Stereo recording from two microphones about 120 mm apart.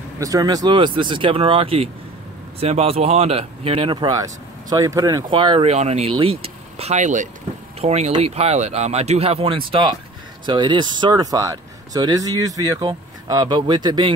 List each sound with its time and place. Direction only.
0.2 s speech: 30° right (ahead or behind)
0.7 s speech: 45° right (ahead or behind)
5.3 s speech: 45° right (ahead or behind); by 6.1 s 65° right (ahead or behind)
6.1 s speech: 50° right (ahead or behind); by 7.2 s 90° right
7.8 s speech: 65° right (ahead or behind); by 14.1 s 40° right (ahead or behind)